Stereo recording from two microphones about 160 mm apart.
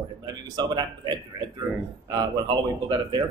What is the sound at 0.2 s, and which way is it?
Speech, 25° right (ahead or behind).